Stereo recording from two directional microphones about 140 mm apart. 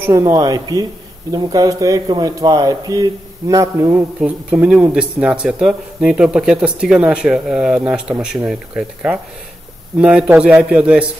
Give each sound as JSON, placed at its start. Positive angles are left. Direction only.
{"t": 0.0, "sound": "speech", "side_deg": -25}
{"t": 4.2, "sound": "speech", "side_deg": -10}